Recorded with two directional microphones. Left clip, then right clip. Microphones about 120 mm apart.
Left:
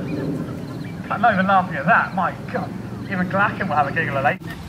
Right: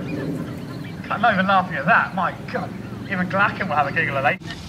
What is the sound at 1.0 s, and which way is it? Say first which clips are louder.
A man's voice: left 1 dB; 40° right (ahead or behind).